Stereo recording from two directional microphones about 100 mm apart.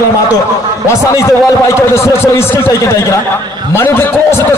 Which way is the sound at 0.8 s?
30° left (ahead or behind).